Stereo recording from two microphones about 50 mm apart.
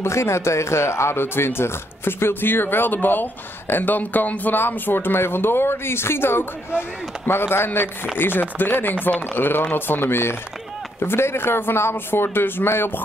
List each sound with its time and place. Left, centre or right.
0.0 s speech: left